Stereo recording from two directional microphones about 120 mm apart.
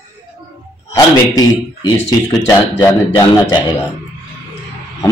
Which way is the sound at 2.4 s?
25° left (ahead or behind).